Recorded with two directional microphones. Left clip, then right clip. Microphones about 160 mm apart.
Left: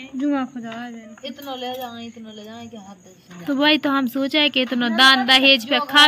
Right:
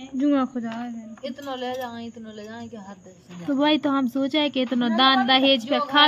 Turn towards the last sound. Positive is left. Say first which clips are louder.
# left 4 dB
turn(degrees=-5)  # may be behind; listen again after turning